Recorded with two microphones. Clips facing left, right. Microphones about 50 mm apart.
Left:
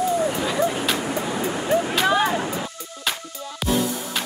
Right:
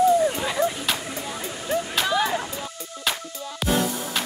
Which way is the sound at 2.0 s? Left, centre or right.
Left.